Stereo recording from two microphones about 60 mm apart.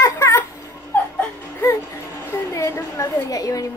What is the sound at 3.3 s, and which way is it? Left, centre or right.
Speech, left.